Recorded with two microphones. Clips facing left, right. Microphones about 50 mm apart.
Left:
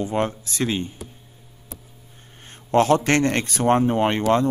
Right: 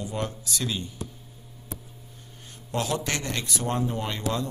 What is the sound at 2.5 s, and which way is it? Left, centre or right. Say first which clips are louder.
Speech: left 11 dB; left.